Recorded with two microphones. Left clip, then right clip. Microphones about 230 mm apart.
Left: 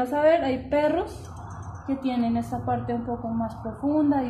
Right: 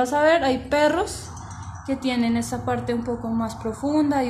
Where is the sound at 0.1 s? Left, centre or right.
Right.